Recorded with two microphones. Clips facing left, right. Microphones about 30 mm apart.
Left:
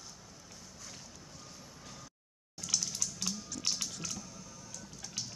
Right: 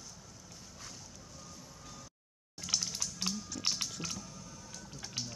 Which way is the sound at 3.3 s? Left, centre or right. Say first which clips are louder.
Right 1 dB; centre.